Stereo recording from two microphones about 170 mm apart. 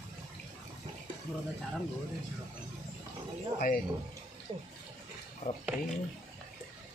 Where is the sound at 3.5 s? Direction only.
55° left (ahead or behind).